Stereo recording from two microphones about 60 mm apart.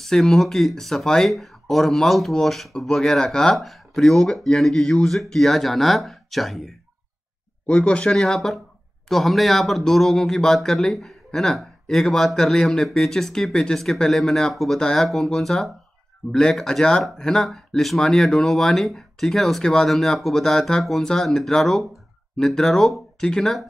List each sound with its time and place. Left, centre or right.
0.0 s speech: centre
7.6 s speech: centre
14.8 s speech: centre